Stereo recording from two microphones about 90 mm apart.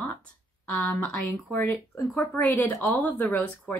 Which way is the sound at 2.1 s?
20° left (ahead or behind).